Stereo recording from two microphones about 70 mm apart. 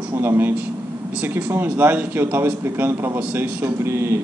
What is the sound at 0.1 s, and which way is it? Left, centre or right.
A man's voice, right.